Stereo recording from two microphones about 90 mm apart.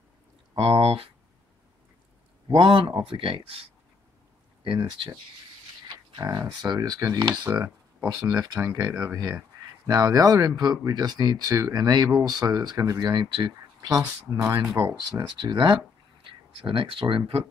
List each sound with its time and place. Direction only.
0.6 s speech: 90° right
2.4 s speech: 65° right (ahead or behind)
3.0 s speech: 80° right
4.6 s speech: 60° right (ahead or behind)
6.1 s speech: 40° right (ahead or behind); by 7.4 s 55° right (ahead or behind)
7.4 s speech: 25° right (ahead or behind); by 12.9 s 45° right (ahead or behind)
13.0 s speech: 55° right (ahead or behind)
14.0 s speech: 35° right (ahead or behind)
15.2 s speech: 60° right (ahead or behind)
16.3 s speech: 75° right (ahead or behind)